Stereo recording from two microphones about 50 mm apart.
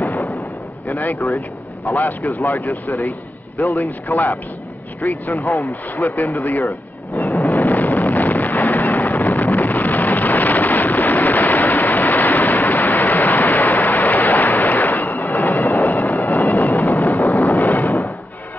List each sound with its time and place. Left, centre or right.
0.8 s speech: left
4.1 s speech: left
5.0 s speech: left
5.6 s speech: left
6.1 s speech: left
7.4 s wind noise: left
15.3 s a sound: left
15.9 s a sound: left
16.3 s music: left
16.9 s a sound: left